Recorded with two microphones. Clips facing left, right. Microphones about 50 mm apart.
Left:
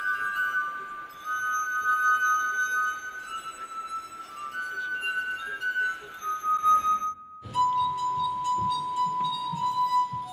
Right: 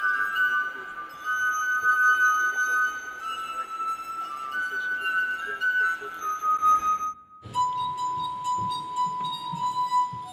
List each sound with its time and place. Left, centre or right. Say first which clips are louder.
0.0 s music: right 4 dB; right
4.6 s music: right 3 dB; right
7.5 s music: left 2 dB; centre